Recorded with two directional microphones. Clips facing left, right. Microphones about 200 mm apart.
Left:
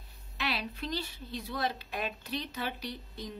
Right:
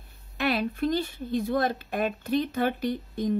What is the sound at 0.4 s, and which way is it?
Speech, 50° right (ahead or behind).